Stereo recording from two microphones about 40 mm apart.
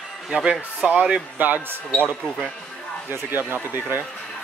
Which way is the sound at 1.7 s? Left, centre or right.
Right.